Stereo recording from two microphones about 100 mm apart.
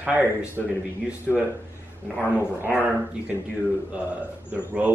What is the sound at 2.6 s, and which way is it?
Speech, 15° right (ahead or behind).